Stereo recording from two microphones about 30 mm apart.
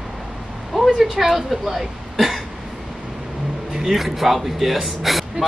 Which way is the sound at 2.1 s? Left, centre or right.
Centre.